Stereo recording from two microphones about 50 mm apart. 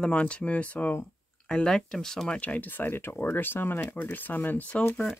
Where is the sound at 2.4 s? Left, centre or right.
Left.